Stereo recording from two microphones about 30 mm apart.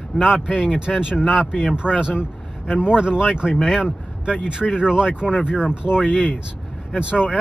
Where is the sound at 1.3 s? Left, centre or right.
Centre.